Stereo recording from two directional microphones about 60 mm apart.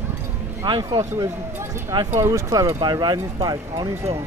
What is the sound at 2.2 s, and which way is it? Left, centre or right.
Speech, right.